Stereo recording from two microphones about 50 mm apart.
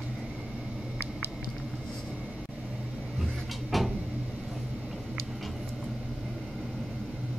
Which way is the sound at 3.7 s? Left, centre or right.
Centre.